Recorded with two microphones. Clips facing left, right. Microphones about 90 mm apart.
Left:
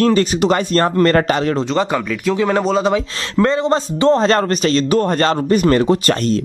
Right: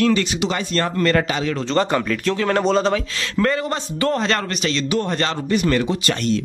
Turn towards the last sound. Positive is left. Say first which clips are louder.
# left 5 dB
turn(degrees=40)  # may be behind; listen again after turning